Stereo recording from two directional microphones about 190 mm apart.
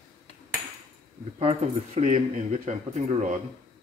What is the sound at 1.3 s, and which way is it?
Speech, 35° right (ahead or behind).